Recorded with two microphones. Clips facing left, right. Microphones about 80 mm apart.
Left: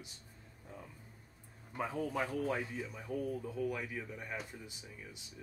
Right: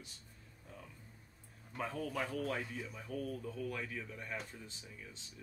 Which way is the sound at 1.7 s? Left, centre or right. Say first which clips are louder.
Left 3 dB; centre.